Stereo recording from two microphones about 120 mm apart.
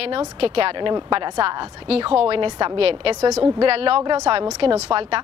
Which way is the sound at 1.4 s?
50° right (ahead or behind).